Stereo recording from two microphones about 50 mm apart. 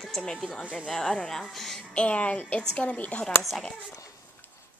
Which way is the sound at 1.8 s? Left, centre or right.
Left.